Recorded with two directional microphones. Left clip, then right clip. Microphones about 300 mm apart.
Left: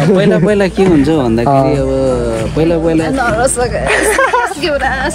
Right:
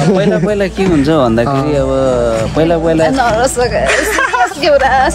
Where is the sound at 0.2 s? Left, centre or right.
Left.